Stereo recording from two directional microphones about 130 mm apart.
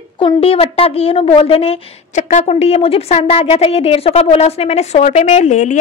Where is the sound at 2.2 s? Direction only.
65° left (ahead or behind).